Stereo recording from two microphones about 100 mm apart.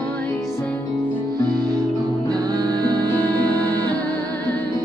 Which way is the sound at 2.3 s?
40° right (ahead or behind).